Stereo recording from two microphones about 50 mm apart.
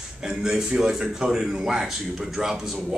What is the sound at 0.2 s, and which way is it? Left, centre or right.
A man's voice, centre.